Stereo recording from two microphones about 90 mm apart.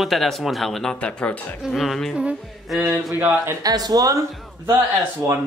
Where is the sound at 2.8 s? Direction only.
20° right (ahead or behind).